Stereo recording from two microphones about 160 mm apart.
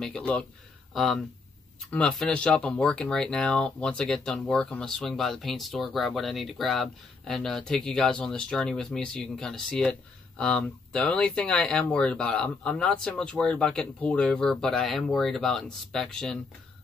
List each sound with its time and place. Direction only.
0.0 s speech: 5° left (ahead or behind)